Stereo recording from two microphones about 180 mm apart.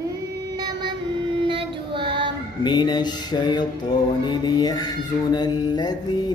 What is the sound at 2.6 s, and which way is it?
Mantra, 25° left (ahead or behind).